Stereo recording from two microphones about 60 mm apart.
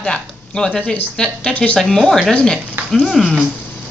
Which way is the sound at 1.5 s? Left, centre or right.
Centre.